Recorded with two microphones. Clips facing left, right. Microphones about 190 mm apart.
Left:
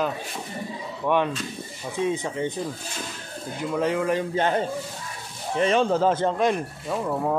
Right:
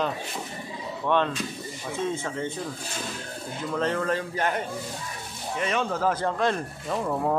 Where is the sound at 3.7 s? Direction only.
10° left (ahead or behind).